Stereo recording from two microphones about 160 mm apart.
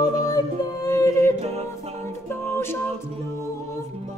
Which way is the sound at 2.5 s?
15° left (ahead or behind).